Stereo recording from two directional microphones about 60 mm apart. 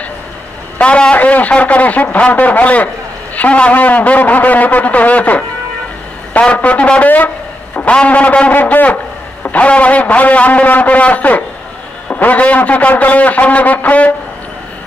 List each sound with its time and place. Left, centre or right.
0.7 s a man's voice: centre
7.7 s a man's voice: centre